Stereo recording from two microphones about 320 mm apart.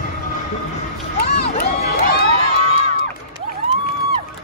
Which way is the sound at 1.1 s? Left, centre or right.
Left.